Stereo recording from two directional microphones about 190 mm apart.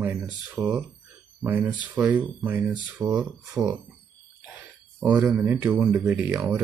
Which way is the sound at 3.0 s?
20° right (ahead or behind).